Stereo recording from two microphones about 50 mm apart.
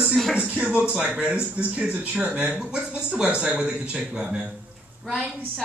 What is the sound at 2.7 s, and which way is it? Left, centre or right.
Speech, right.